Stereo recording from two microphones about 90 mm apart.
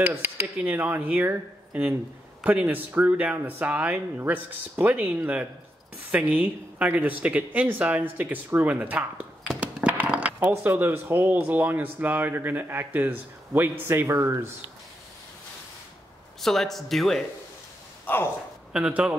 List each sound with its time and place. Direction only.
0.0 s speech: 20° right (ahead or behind)
9.5 s a sound: 10° right (ahead or behind)
10.5 s speech: 25° right (ahead or behind)
16.3 s speech: 5° left (ahead or behind)
18.0 s speech: 25° left (ahead or behind)
18.7 s a man's voice: 10° right (ahead or behind)